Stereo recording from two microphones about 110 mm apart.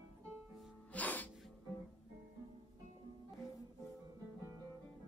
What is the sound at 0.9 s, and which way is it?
Music, 15° left (ahead or behind).